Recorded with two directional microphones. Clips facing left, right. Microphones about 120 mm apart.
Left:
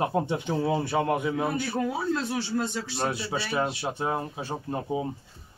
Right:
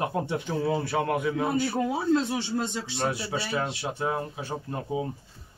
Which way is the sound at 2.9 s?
25° left (ahead or behind).